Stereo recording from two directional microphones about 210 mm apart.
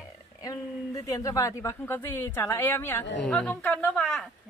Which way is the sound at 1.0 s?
15° left (ahead or behind).